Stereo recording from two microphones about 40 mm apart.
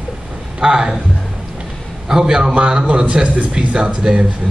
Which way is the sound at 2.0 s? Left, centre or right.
Centre.